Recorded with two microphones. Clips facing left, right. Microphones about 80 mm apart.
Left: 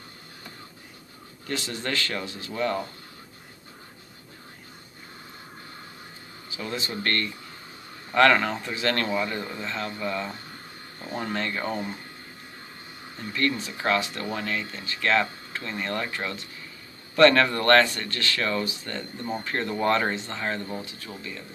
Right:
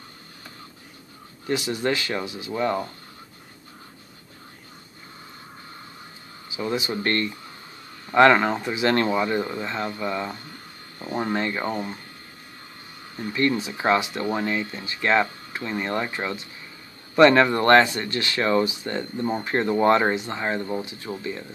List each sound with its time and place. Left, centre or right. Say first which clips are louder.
1.5 s speech: right 6 dB; centre
6.5 s speech: right 6 dB; centre
13.3 s speech: right 4 dB; centre